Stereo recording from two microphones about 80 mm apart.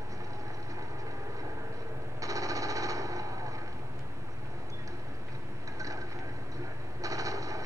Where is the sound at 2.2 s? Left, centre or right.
Right.